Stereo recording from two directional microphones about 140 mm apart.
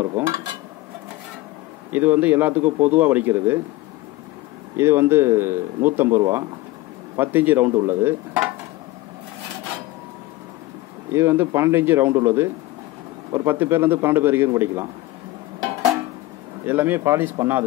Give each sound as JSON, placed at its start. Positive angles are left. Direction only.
{"t": 0.2, "sound": "a man's voice", "side_deg": -10}
{"t": 1.9, "sound": "a man's voice", "side_deg": -10}
{"t": 4.7, "sound": "a man's voice", "side_deg": -15}
{"t": 11.1, "sound": "a man's voice", "side_deg": -15}
{"t": 16.6, "sound": "a man's voice", "side_deg": -15}